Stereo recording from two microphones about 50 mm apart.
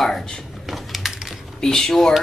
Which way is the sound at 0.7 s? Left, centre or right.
Centre.